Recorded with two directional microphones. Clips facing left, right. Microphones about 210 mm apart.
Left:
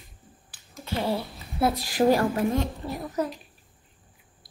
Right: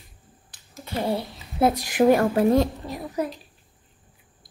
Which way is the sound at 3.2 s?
10° right (ahead or behind).